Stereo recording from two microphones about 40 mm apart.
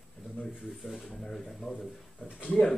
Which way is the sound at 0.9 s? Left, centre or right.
Centre.